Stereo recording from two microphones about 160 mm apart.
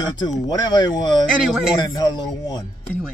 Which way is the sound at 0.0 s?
25° left (ahead or behind).